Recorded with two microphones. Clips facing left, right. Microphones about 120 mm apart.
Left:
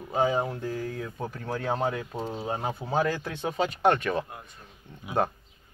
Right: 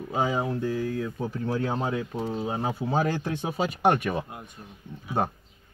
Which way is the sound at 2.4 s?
5° right (ahead or behind).